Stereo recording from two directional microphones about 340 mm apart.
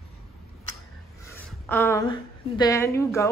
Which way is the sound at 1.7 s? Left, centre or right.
Centre.